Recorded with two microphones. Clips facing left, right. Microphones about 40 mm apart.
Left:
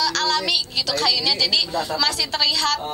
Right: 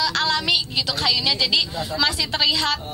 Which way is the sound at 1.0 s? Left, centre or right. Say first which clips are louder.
Even; centre.